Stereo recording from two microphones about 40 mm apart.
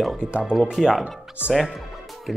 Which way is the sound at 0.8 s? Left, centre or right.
Centre.